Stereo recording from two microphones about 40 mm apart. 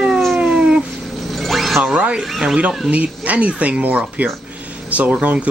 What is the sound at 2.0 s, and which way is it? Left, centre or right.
Speech, right.